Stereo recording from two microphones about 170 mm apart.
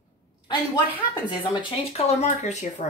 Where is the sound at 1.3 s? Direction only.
30° left (ahead or behind).